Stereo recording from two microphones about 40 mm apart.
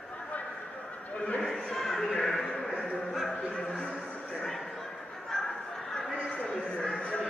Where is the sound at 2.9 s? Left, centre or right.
Left.